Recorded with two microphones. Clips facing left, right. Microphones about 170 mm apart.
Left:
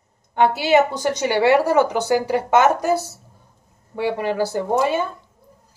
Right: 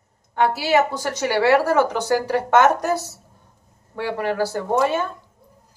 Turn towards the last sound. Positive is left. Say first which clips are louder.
# left 1 dB
turn(degrees=15)  # may be behind; listen again after turning